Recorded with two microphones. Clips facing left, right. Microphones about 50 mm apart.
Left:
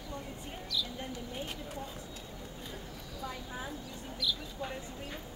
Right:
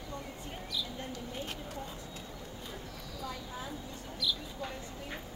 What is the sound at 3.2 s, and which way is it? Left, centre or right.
Speech, left.